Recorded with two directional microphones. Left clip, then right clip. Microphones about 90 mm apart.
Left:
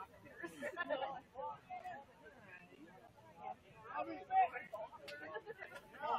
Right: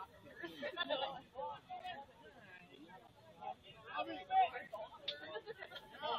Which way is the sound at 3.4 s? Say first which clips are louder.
Right 1 dB; 5° left (ahead or behind).